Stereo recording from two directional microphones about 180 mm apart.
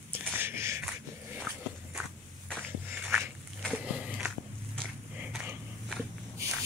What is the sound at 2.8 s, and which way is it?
Walk, 10° right (ahead or behind).